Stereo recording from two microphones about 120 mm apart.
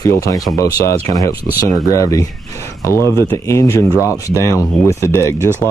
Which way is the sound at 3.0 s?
25° right (ahead or behind).